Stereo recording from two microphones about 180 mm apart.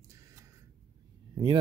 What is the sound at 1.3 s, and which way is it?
Speech, 25° right (ahead or behind).